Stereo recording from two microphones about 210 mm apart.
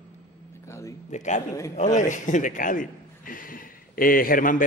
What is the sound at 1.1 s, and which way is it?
A man's voice, 35° left (ahead or behind).